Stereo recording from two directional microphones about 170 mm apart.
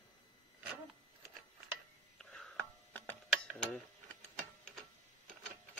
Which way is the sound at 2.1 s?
5° left (ahead or behind).